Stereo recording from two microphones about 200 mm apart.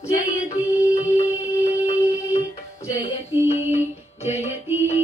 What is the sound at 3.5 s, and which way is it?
Music, 35° left (ahead or behind).